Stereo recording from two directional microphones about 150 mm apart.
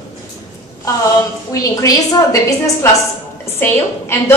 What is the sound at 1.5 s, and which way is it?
A woman's voice, 20° left (ahead or behind).